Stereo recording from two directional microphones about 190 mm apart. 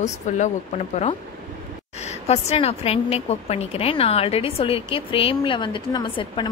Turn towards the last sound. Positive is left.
turn(degrees=25)  # may be behind; listen again after turning